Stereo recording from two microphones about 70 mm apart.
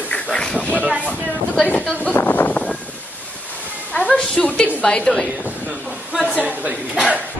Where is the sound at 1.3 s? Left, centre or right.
Left.